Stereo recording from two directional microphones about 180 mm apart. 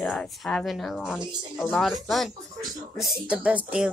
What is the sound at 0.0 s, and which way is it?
Speech, centre (ahead or behind).